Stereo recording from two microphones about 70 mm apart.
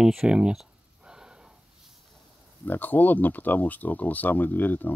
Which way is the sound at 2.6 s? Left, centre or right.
Left.